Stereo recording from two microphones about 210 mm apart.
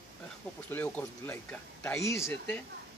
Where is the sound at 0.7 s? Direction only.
5° left (ahead or behind).